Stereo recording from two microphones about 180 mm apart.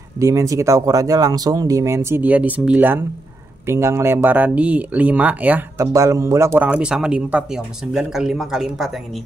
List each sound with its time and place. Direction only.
0.2 s speech: 15° right (ahead or behind); by 8.9 s centre (ahead or behind)